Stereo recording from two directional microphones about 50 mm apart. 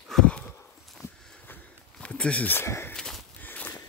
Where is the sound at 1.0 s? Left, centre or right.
Left.